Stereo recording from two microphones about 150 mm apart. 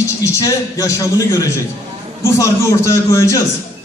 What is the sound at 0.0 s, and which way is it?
A man's voice, 20° left (ahead or behind).